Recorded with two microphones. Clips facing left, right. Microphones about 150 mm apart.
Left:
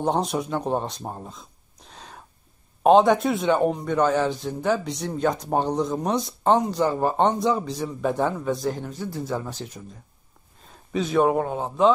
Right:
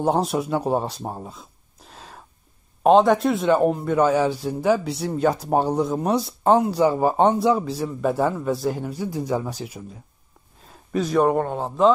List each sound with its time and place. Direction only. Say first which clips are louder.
0.0 s a man's voice: right 3 dB; 5° right (ahead or behind)
10.9 s a man's voice: right 1 dB; centre (ahead or behind)